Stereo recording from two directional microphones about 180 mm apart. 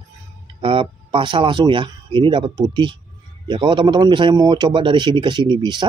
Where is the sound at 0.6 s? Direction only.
30° right (ahead or behind).